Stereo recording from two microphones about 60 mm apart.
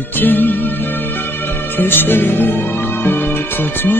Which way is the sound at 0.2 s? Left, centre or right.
Left.